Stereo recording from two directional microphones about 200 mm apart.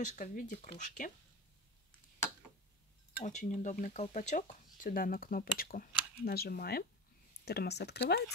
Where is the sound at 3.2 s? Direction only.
35° left (ahead or behind).